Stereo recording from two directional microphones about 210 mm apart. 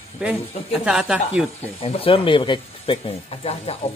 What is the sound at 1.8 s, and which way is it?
Speech, 25° left (ahead or behind).